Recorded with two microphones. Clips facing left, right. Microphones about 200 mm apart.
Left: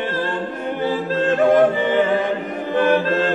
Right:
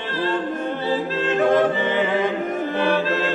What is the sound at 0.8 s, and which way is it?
A capella, 50° left (ahead or behind).